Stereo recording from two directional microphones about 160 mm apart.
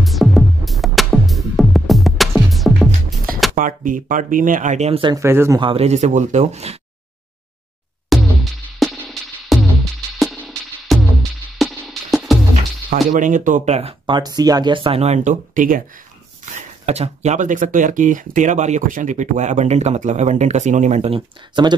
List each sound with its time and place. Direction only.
0.0 s music: centre (ahead or behind)
3.5 s speech: 55° right (ahead or behind); by 5.1 s 40° right (ahead or behind)
5.1 s speech: 15° right (ahead or behind)
5.6 s speech: 35° right (ahead or behind)
8.1 s drum machine: centre (ahead or behind)
8.7 s music: 5° left (ahead or behind)
12.9 s speech: 50° right (ahead or behind)
16.5 s speech: 40° right (ahead or behind)
21.6 s speech: 30° right (ahead or behind)